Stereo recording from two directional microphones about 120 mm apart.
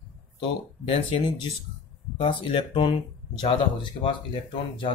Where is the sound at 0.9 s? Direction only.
50° left (ahead or behind).